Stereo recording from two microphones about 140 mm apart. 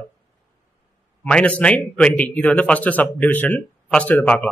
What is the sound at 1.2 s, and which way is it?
A man's voice, 10° left (ahead or behind).